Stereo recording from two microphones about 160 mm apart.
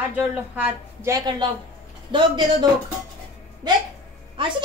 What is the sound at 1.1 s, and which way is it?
A woman's voice, 25° right (ahead or behind).